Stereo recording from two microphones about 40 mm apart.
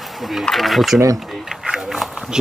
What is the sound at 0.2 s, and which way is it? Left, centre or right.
Speech, centre.